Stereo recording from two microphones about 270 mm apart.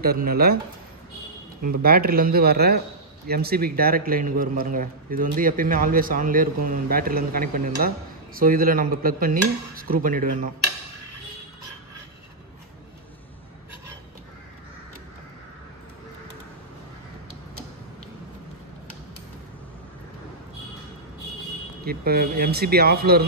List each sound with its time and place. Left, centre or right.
0.0 s a man's voice: right
1.8 s a man's voice: right
21.8 s a man's voice: right